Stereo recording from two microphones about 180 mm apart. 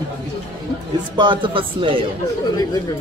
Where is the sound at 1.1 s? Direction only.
25° right (ahead or behind).